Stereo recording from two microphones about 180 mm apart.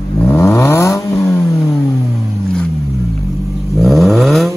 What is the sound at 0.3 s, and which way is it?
Vehicle, 15° left (ahead or behind).